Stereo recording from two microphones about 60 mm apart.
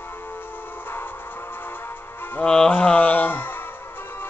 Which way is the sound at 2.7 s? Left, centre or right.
Left.